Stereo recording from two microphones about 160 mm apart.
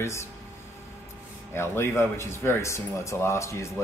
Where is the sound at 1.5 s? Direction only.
15° left (ahead or behind).